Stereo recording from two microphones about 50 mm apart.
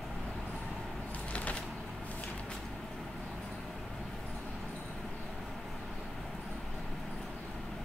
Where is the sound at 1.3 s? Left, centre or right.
Left.